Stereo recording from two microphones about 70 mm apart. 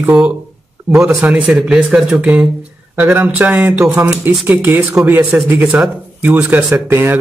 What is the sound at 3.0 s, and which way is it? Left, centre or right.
Speech, right.